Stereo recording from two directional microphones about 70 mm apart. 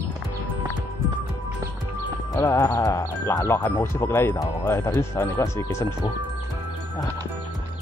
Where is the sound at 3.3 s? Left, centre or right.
Left.